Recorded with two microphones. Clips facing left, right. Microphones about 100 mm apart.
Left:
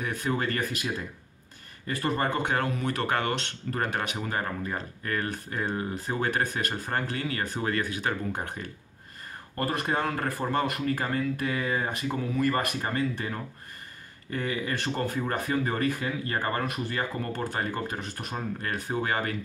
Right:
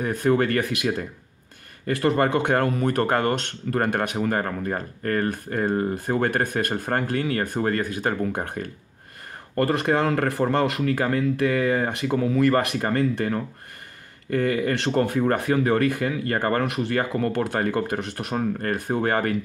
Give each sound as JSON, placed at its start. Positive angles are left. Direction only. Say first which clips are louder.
{"t": 0.0, "sound": "speech", "louder": "right 7 dB", "side_deg": -40}
{"t": 0.3, "sound": "speech", "louder": "right 8 dB", "side_deg": -60}
{"t": 9.6, "sound": "speech", "louder": "right 7 dB", "side_deg": -85}
{"t": 12.8, "sound": "speech", "louder": "right 7 dB", "side_deg": -60}
{"t": 18.6, "sound": "speech", "louder": "right 6 dB", "side_deg": -50}